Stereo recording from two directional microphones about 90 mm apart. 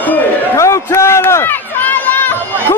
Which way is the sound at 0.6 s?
35° left (ahead or behind).